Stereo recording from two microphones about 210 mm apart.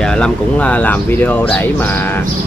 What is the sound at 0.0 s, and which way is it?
Speech, 5° left (ahead or behind).